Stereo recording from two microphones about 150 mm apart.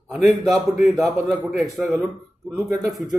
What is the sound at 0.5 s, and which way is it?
Speech, centre (ahead or behind).